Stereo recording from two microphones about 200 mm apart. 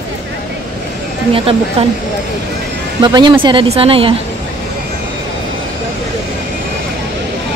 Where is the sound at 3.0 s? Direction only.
25° right (ahead or behind).